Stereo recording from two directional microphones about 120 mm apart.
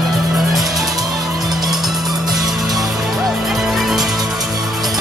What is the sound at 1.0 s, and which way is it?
Music, 30° right (ahead or behind).